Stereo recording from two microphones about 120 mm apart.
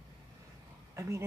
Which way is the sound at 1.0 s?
25° right (ahead or behind).